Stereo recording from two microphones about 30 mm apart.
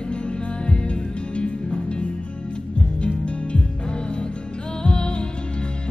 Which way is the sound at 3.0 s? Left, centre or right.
Left.